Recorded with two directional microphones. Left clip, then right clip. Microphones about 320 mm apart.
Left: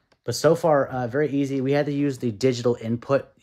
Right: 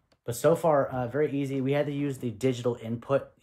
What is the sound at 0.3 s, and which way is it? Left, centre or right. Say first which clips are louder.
Speech: left 4 dB; left.